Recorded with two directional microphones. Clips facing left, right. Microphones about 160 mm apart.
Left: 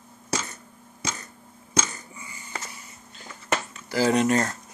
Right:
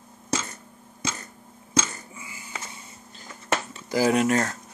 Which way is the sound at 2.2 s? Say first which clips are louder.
Left 4 dB; 5° right (ahead or behind).